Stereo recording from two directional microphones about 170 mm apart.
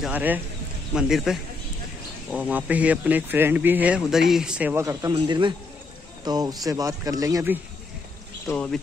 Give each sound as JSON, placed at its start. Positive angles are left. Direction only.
{"t": 0.0, "sound": "a man's voice", "side_deg": -10}
{"t": 4.8, "sound": "speech", "side_deg": -25}
{"t": 8.5, "sound": "a man's voice", "side_deg": 5}